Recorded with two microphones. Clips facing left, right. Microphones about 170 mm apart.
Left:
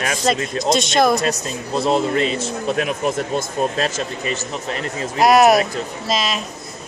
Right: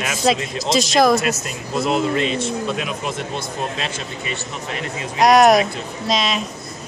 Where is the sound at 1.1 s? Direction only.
35° left (ahead or behind).